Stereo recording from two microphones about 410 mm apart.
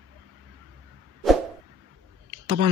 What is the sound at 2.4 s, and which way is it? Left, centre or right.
Speech, right.